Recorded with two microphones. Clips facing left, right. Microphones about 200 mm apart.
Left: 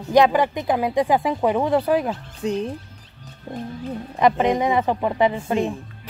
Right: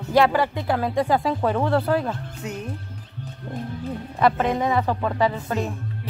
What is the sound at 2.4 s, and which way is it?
Speech, 30° left (ahead or behind).